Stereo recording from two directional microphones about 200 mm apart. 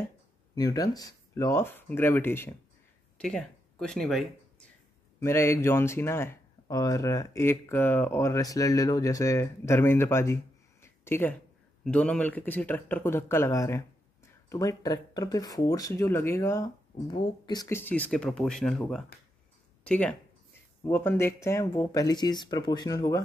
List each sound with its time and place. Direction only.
0.6 s speech: 20° left (ahead or behind); by 4.3 s centre (ahead or behind)
5.2 s speech: 15° left (ahead or behind)